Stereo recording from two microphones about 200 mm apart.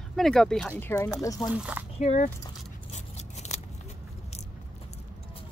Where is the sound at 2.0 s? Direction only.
35° left (ahead or behind).